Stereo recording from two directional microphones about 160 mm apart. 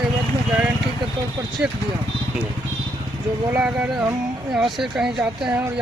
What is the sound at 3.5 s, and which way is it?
Speech, 10° right (ahead or behind).